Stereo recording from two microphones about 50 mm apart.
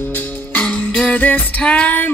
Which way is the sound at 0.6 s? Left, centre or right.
Left.